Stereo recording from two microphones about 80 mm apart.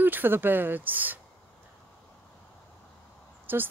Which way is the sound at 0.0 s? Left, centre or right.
Right.